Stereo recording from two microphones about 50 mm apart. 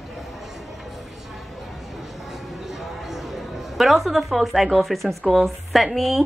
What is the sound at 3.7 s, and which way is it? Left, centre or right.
Speech, centre.